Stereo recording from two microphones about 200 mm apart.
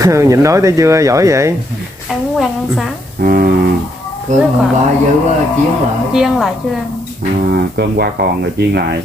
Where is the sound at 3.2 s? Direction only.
45° right (ahead or behind).